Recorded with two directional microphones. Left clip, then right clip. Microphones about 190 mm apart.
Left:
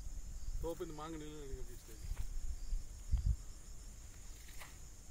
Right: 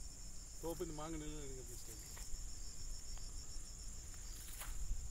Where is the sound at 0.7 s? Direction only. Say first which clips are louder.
Left 2 dB; 35° right (ahead or behind).